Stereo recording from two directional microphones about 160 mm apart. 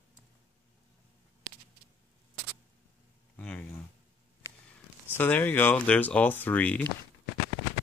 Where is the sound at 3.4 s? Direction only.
5° left (ahead or behind).